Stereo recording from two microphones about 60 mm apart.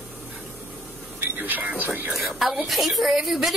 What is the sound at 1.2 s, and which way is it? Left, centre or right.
Speech, right.